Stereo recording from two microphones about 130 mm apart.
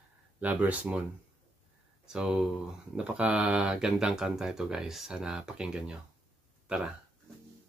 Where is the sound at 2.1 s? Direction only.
5° right (ahead or behind).